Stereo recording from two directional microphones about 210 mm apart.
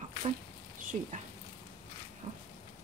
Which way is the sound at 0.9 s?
35° right (ahead or behind).